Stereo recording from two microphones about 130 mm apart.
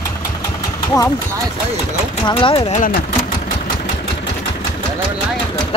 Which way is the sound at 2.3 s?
40° left (ahead or behind).